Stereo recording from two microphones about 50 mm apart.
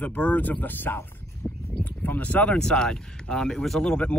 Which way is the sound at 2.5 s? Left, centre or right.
Centre.